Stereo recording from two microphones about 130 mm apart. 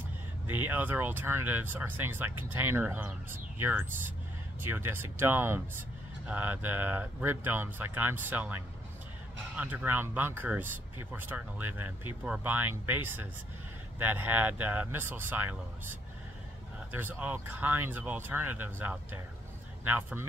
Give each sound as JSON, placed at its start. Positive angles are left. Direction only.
{"t": 0.5, "sound": "speech", "side_deg": -15}
{"t": 9.6, "sound": "speech", "side_deg": -10}